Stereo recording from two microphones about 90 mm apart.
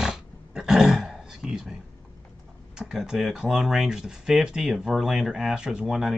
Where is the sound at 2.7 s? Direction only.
5° right (ahead or behind).